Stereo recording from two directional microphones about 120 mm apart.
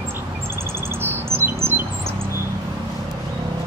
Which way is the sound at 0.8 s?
20° right (ahead or behind).